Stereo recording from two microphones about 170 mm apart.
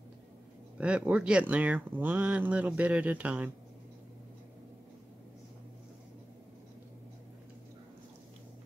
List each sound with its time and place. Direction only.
0.7 s speech: 5° right (ahead or behind)